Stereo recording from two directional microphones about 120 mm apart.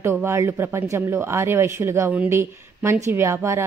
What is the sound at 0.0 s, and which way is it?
Speech, 20° right (ahead or behind).